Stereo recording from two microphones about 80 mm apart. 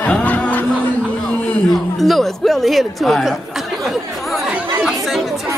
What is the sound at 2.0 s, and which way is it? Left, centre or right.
Speech, centre.